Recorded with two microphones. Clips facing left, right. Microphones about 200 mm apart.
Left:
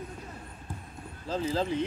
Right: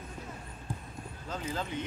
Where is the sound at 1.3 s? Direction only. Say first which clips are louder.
Left 7 dB; 30° left (ahead or behind).